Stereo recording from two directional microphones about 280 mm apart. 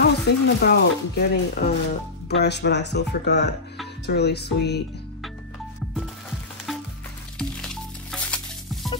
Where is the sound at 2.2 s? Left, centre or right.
Left.